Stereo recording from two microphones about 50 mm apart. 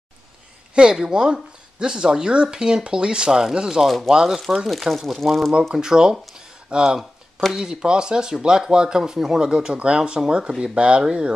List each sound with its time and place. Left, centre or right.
0.7 s speech: centre
5.8 s speech: centre
6.3 s a sound: centre
7.5 s speech: centre